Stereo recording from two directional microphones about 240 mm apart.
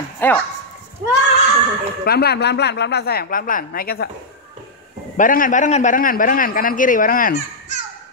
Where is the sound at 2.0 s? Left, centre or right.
Left.